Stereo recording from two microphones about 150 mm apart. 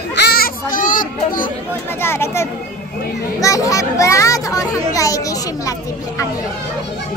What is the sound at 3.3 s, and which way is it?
A child's voice, 20° left (ahead or behind).